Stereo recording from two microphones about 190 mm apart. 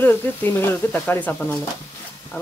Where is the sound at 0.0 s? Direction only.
10° left (ahead or behind).